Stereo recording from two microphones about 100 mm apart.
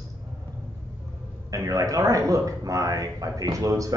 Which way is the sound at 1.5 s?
35° right (ahead or behind).